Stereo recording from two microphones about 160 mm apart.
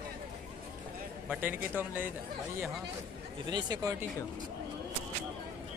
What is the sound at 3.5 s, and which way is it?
Speech, 25° right (ahead or behind).